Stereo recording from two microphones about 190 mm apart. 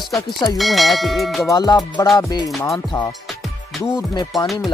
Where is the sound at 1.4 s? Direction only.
20° left (ahead or behind).